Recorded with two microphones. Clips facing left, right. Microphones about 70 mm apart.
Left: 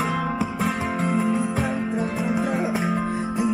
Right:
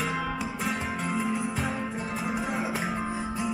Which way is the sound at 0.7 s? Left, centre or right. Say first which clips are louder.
Left 5 dB; centre.